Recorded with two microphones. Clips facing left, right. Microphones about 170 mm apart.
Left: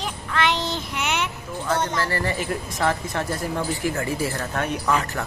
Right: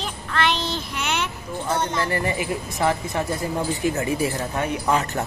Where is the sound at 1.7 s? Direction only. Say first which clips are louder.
Even; 20° right (ahead or behind).